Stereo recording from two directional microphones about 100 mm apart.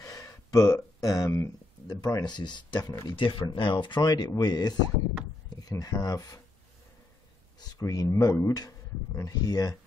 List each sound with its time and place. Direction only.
0.0 s speech: 35° left (ahead or behind)
3.2 s speech: 55° left (ahead or behind); by 6.4 s 40° left (ahead or behind)
7.7 s speech: 40° left (ahead or behind)